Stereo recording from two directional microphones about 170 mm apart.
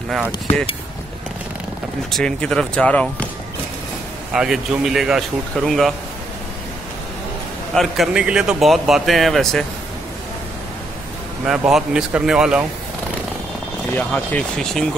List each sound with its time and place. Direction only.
2.0 s a man's voice: 5° left (ahead or behind)
4.3 s a man's voice: 5° right (ahead or behind)
7.7 s a man's voice: centre (ahead or behind)
11.4 s a man's voice: 5° right (ahead or behind)
13.9 s a man's voice: 5° left (ahead or behind)